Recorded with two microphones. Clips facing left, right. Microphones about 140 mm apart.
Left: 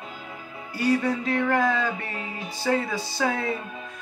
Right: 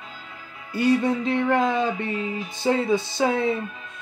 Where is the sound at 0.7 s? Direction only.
25° right (ahead or behind).